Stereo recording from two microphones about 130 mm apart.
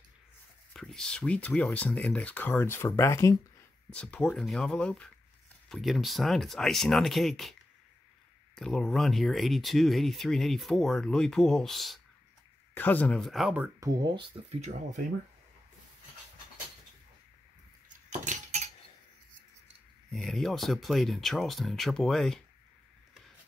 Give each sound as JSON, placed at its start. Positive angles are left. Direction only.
{"t": 0.7, "sound": "speech", "side_deg": 5}
{"t": 3.9, "sound": "speech", "side_deg": 10}
{"t": 8.5, "sound": "speech", "side_deg": 5}
{"t": 12.7, "sound": "speech", "side_deg": 15}
{"t": 13.7, "sound": "speech", "side_deg": -30}
{"t": 18.2, "sound": "cutlery", "side_deg": -65}
{"t": 20.1, "sound": "speech", "side_deg": 0}